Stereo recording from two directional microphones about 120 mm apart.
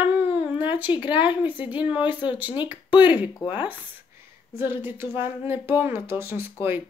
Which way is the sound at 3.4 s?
15° right (ahead or behind).